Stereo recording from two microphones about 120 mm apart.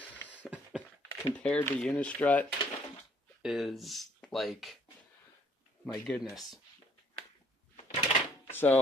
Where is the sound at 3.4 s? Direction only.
Centre (ahead or behind).